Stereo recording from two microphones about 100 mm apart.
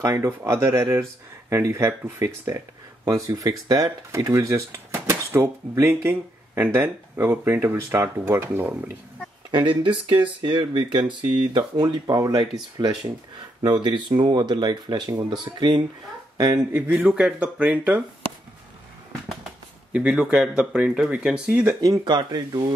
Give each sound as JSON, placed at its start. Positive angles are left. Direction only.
{"t": 0.0, "sound": "speech", "side_deg": -25}
{"t": 3.1, "sound": "speech", "side_deg": -35}
{"t": 9.5, "sound": "speech", "side_deg": -50}
{"t": 13.8, "sound": "speech", "side_deg": -50}
{"t": 16.7, "sound": "speech", "side_deg": -15}
{"t": 19.9, "sound": "speech", "side_deg": -10}
{"t": 22.0, "sound": "speech", "side_deg": -45}